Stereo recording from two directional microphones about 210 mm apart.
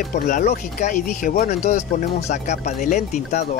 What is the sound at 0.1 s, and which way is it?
Speech, 35° left (ahead or behind).